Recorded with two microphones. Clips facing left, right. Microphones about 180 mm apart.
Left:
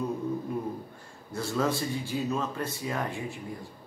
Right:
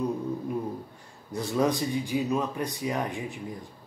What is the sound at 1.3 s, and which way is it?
Speech, 15° right (ahead or behind).